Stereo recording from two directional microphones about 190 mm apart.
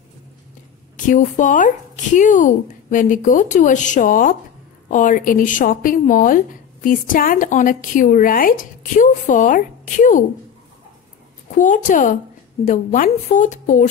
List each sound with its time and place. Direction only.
0.9 s a woman's voice: 40° left (ahead or behind)
11.5 s a woman's voice: 40° left (ahead or behind)